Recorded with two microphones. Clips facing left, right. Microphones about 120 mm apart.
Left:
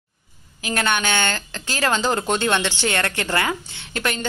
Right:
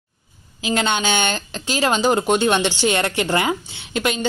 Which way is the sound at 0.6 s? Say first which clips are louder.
Right 2 dB; 20° right (ahead or behind).